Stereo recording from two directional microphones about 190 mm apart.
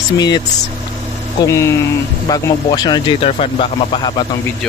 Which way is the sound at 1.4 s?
15° left (ahead or behind).